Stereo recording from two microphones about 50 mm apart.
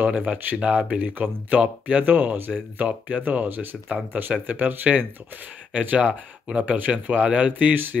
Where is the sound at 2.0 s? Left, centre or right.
Right.